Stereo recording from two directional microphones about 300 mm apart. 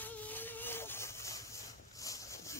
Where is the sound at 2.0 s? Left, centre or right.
Centre.